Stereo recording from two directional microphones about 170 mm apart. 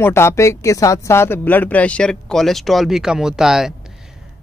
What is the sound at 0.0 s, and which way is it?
Speech, 15° left (ahead or behind).